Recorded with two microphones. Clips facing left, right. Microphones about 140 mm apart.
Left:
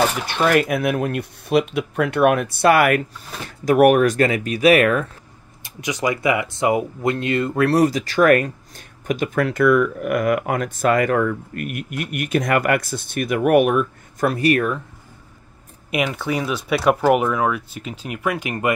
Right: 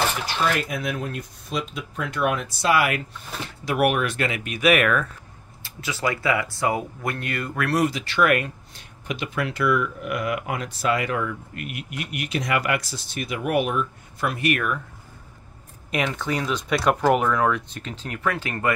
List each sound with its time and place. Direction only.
0.3 s speech: 60° left (ahead or behind)
3.6 s speech: 45° left (ahead or behind)
5.6 s speech: 15° left (ahead or behind); by 13.8 s 55° left (ahead or behind)
14.2 s speech: 35° left (ahead or behind)
15.9 s speech: 10° left (ahead or behind)